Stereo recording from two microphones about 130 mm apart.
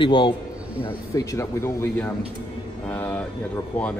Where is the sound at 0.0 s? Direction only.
35° left (ahead or behind).